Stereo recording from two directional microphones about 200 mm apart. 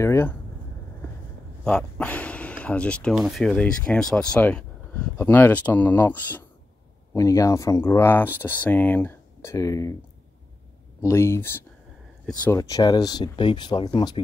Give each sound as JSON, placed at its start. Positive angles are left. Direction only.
{"t": 0.0, "sound": "speech", "side_deg": 10}
{"t": 1.6, "sound": "speech", "side_deg": 5}
{"t": 11.0, "sound": "speech", "side_deg": 15}
{"t": 12.4, "sound": "speech", "side_deg": 15}